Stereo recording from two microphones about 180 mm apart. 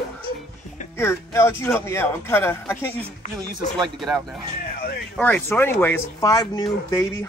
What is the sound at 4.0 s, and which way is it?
Speech, centre (ahead or behind).